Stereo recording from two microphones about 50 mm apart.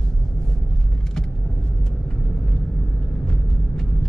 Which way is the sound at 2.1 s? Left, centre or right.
Centre.